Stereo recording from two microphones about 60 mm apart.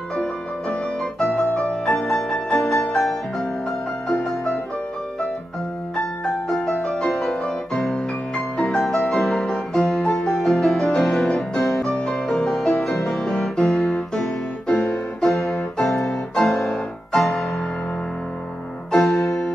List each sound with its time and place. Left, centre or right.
1.5 s music: centre
5.9 s music: centre
7.4 s music: centre
8.5 s music: centre
15.1 s piano: centre
15.5 s keyboard: centre
16.1 s music: centre
18.9 s music: centre